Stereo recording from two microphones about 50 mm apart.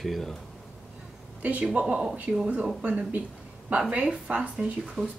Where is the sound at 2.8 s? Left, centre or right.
Right.